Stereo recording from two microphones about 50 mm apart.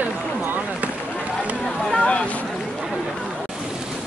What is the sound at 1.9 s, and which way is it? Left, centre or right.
Speech, left.